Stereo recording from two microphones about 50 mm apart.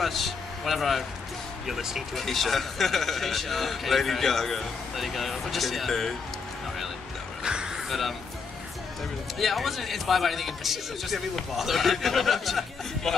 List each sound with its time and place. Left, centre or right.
0.0 s speech: centre
2.1 s a man's voice: centre
7.4 s a sound: centre
9.4 s a man's voice: centre